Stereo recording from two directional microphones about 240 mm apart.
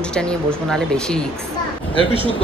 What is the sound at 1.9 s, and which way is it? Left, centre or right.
Speech, right.